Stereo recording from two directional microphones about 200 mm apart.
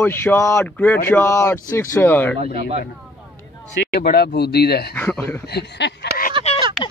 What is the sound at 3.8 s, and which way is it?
Speech, 50° left (ahead or behind).